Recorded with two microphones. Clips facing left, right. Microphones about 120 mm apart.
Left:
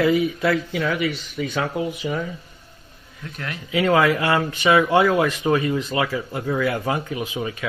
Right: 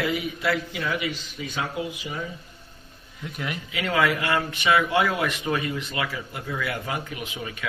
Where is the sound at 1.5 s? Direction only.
65° left (ahead or behind).